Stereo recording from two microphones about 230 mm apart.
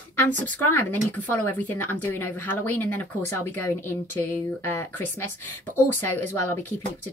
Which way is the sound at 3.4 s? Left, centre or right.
Left.